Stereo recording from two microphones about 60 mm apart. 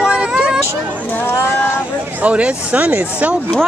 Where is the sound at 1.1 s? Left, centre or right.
Left.